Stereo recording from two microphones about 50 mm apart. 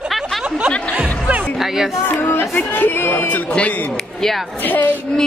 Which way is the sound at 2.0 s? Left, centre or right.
Left.